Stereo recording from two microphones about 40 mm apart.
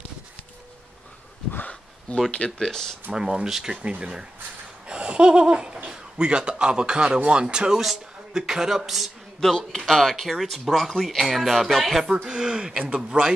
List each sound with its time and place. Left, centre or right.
2.1 s speech: left
2.6 s speech: centre
3.1 s speech: centre
3.7 s speech: right
4.0 s speech: centre
4.8 s laughter: right
5.9 s a man's voice: right; by 9.1 s centre
9.4 s speech: centre
12.3 s speech: right